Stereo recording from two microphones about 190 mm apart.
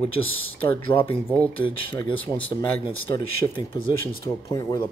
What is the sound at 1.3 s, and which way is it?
Speech, 10° left (ahead or behind).